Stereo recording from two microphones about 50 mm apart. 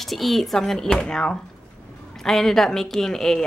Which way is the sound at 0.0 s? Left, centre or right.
Centre.